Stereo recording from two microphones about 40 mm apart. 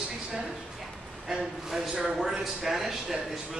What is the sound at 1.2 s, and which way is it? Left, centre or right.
Speech, centre.